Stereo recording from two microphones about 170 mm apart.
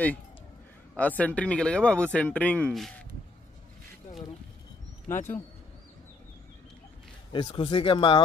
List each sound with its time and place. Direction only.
0.9 s speech: 10° left (ahead or behind)
7.3 s speech: 25° left (ahead or behind)